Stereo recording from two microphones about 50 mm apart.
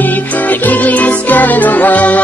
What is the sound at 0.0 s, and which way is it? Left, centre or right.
Music, left.